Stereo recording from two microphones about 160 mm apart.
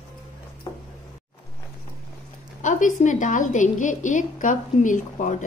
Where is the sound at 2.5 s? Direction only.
50° left (ahead or behind).